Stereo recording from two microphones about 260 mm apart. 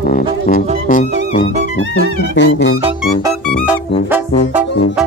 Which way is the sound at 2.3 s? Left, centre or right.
Left.